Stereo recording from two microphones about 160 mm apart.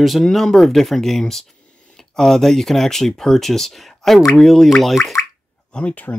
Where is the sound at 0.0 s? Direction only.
Centre (ahead or behind).